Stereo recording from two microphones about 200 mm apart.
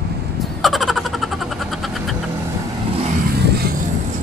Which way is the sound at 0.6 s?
Centre (ahead or behind).